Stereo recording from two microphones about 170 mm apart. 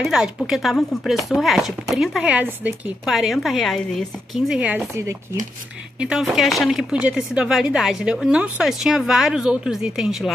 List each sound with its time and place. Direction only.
0.0 s speech: centre (ahead or behind)
4.9 s speech: 15° right (ahead or behind)
5.9 s speech: 5° right (ahead or behind)